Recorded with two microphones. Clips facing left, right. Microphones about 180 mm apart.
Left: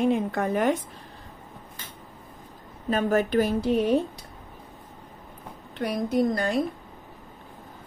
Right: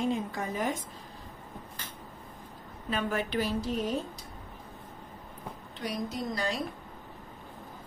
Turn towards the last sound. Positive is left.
turn(degrees=55)  # may be behind; listen again after turning